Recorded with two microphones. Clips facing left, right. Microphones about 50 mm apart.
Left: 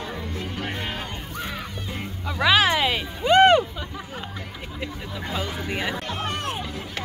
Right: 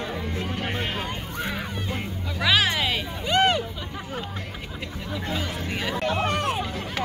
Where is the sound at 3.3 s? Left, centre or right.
Left.